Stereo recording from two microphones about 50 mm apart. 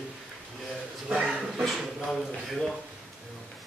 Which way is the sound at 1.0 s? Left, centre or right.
Centre.